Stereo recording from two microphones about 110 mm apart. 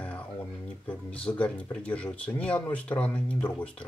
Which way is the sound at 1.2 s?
10° left (ahead or behind).